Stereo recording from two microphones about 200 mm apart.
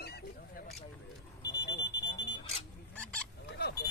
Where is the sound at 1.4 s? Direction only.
60° left (ahead or behind).